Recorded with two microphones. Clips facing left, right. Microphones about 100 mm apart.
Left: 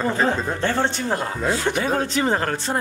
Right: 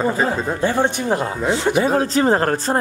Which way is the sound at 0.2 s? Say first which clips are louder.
Right 2 dB; 5° right (ahead or behind).